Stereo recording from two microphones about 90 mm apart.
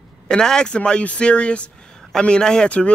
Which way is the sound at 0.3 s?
10° left (ahead or behind).